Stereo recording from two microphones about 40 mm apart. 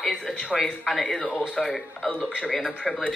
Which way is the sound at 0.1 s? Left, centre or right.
Centre.